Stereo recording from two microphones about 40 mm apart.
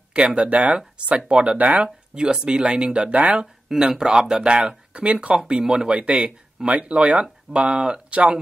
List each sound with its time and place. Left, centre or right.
0.1 s speech: right
3.6 s speech: centre; by 5.4 s right
5.5 s speech: centre
5.9 s speech: right
8.1 s speech: right